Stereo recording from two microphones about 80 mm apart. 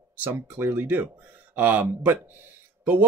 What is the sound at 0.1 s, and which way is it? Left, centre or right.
Speech, right.